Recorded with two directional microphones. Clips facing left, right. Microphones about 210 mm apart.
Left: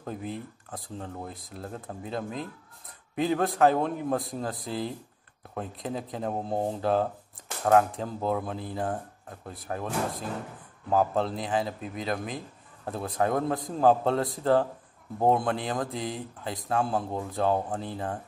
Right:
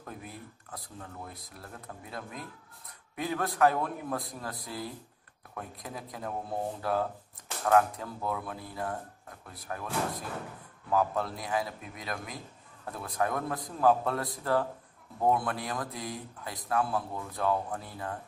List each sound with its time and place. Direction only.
0.0 s speech: 30° left (ahead or behind)
10.9 s speech: 30° left (ahead or behind)